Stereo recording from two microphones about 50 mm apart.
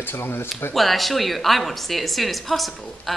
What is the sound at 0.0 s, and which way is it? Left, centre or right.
Speech, left.